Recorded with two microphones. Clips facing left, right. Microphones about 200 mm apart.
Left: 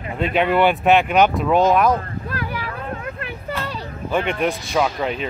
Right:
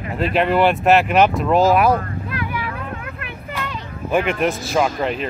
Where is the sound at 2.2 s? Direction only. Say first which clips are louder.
Right 1 dB; 40° left (ahead or behind).